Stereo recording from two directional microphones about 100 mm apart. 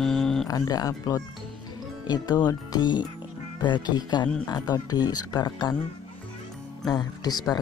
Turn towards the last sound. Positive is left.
turn(degrees=40)  # may be behind; listen again after turning